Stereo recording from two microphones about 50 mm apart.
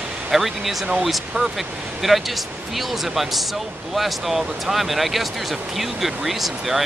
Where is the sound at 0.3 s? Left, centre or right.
Centre.